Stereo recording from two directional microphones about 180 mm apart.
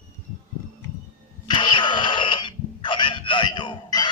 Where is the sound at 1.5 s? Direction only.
25° left (ahead or behind).